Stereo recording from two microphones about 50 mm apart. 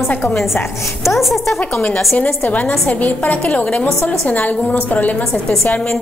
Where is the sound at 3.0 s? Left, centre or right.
Left.